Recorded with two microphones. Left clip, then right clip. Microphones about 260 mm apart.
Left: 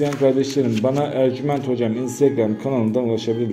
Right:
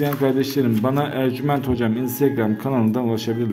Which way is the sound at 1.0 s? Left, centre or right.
Centre.